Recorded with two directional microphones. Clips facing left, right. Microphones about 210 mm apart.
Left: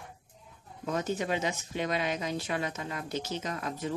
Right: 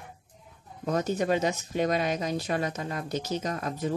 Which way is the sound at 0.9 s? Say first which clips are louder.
Right 5 dB; 40° right (ahead or behind).